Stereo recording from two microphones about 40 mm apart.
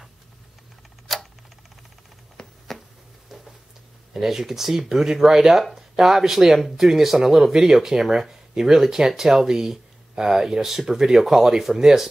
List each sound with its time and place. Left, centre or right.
1.1 s tick-tock: centre
2.4 s a sound: left
4.1 s speech: centre